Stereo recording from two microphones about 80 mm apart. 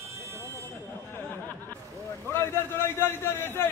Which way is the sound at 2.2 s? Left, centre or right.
Left.